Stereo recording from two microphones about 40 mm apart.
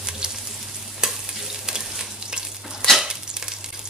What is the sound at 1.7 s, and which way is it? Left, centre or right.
Frying, centre.